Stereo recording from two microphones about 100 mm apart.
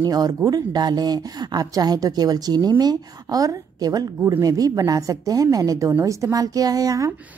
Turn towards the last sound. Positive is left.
turn(degrees=-35)  # may be behind; listen again after turning